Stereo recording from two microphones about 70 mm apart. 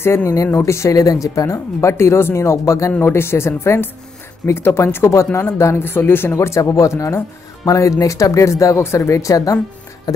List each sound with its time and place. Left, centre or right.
0.0 s speech: left
3.0 s speech: left
6.3 s speech: left